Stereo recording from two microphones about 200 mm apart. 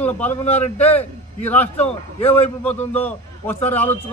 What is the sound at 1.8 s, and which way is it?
Speech, 30° left (ahead or behind).